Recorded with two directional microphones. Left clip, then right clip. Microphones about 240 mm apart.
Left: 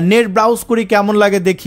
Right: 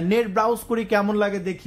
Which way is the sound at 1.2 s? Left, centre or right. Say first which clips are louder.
Left 12 dB; left.